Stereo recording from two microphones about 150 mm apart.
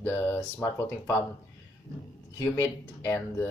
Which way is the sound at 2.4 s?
20° left (ahead or behind).